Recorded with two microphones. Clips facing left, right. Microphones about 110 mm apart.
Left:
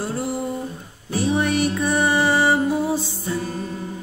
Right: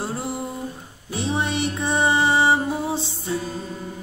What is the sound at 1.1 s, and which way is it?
Music, 20° right (ahead or behind).